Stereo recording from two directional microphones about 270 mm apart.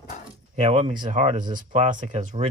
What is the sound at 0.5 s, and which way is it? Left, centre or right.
Speech, right.